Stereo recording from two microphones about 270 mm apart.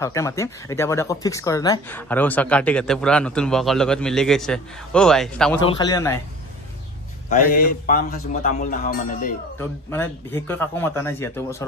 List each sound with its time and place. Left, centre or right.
0.0 s speech: centre
5.6 s speech: centre
7.2 s speech: left
9.6 s speech: centre